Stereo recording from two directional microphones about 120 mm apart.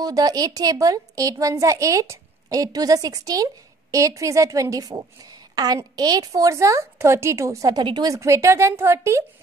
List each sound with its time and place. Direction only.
0.0 s a woman's voice: 30° right (ahead or behind)
8.1 s a woman's voice: 25° right (ahead or behind)